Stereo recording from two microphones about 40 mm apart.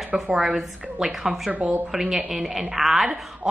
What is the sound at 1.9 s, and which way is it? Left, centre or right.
Speech, centre.